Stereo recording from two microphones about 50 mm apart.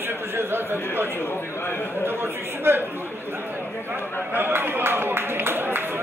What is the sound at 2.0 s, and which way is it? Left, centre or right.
A man's voice, right.